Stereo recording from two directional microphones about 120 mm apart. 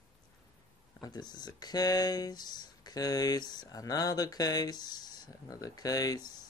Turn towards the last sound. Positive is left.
turn(degrees=35)  # may be behind; listen again after turning